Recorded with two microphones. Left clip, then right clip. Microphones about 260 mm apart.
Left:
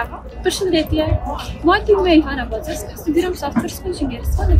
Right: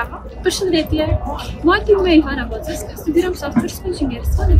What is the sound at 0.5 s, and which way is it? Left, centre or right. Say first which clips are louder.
Speech: right 1 dB; centre.